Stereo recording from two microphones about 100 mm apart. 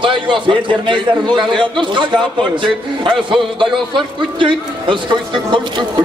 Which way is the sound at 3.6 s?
55° right (ahead or behind).